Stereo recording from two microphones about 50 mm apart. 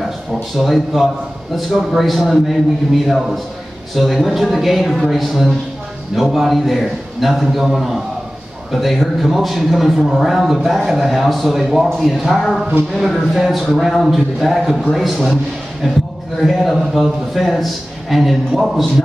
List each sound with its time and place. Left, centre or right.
0.6 s a man's voice: centre
16.4 s a man's voice: centre